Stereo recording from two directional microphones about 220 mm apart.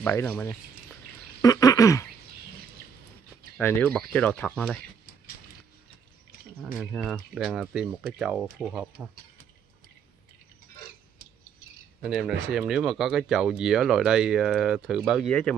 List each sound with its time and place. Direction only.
0.0 s speech: 10° left (ahead or behind)
1.4 s a sound: 15° left (ahead or behind)
3.5 s speech: 10° left (ahead or behind)
6.6 s speech: 5° right (ahead or behind)
12.0 s speech: centre (ahead or behind)